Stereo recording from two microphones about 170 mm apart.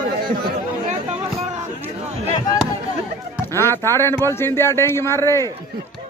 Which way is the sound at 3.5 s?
15° left (ahead or behind).